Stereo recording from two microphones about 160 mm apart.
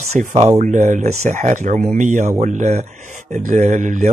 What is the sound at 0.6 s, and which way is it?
Speech, 50° right (ahead or behind).